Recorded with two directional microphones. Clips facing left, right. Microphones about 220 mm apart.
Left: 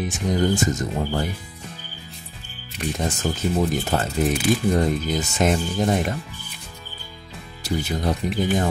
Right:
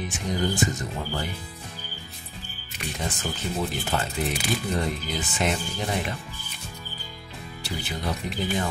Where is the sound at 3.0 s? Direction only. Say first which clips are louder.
Left 6 dB; 45° left (ahead or behind).